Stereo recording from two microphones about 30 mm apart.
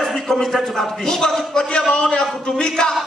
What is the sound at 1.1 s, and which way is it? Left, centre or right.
A man's voice, left.